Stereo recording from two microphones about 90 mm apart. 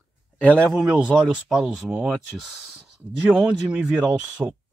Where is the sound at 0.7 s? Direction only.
10° right (ahead or behind).